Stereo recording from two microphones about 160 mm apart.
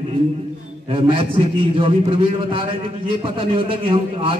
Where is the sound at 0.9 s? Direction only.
35° right (ahead or behind).